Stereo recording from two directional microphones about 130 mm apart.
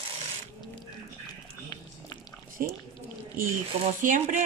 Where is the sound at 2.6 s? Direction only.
90° right.